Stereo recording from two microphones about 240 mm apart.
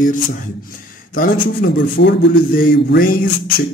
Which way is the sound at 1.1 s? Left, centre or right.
Left.